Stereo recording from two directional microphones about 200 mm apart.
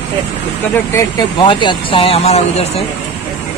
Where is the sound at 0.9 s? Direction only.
20° left (ahead or behind).